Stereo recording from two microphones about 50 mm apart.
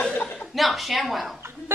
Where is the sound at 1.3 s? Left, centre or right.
Right.